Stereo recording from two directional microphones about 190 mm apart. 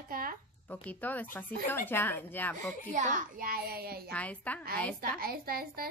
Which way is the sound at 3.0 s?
40° right (ahead or behind).